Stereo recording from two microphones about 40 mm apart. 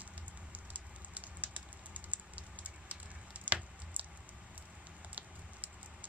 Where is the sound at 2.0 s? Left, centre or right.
Right.